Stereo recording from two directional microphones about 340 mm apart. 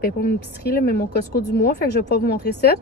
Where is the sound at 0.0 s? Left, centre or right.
Left.